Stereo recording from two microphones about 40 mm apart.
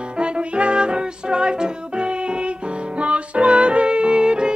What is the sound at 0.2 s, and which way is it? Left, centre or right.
Music, right.